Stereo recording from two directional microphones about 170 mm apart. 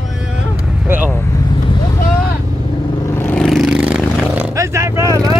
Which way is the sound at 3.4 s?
Centre (ahead or behind).